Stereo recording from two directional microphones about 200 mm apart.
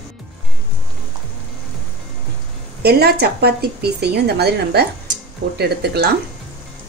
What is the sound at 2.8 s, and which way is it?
A woman's voice, 50° right (ahead or behind).